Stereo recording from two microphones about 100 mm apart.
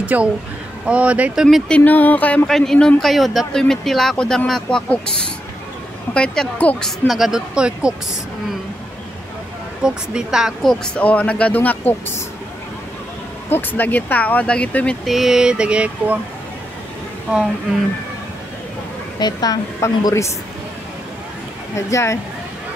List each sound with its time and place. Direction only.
0.0 s speech: 15° right (ahead or behind)
0.8 s a sound: 15° right (ahead or behind)
1.9 s speech: 15° left (ahead or behind)
2.4 s speech: 5° left (ahead or behind)
6.1 s speech: 10° left (ahead or behind)
6.8 s speech: centre (ahead or behind)
9.8 s speech: 5° right (ahead or behind)
10.7 s speech: 15° left (ahead or behind)
13.5 s speech: 20° left (ahead or behind)
15.0 s a sound: centre (ahead or behind)
19.1 s a woman's voice: 40° left (ahead or behind)
21.7 s speech: 30° left (ahead or behind)